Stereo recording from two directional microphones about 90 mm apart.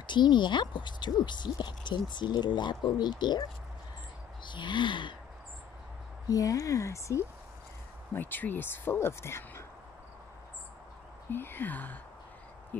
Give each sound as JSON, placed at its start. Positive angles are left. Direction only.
{"t": 0.0, "sound": "speech", "side_deg": 55}
{"t": 4.5, "sound": "speech", "side_deg": 60}
{"t": 6.2, "sound": "speech", "side_deg": 40}
{"t": 8.1, "sound": "speech", "side_deg": 20}
{"t": 11.2, "sound": "speech", "side_deg": 25}